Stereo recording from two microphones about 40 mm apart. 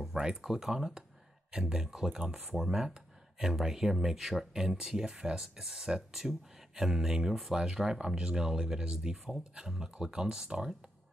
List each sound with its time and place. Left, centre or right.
0.1 s speech: centre